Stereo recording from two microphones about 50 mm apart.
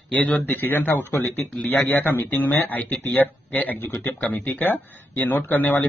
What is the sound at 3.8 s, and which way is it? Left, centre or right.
Speech, left.